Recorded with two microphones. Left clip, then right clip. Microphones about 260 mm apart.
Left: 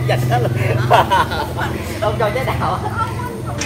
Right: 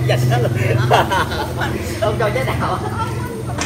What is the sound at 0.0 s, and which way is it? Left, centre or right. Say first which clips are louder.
Speech: left 1 dB; left.